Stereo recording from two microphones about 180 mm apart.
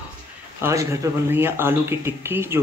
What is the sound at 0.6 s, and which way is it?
Speech, 15° right (ahead or behind).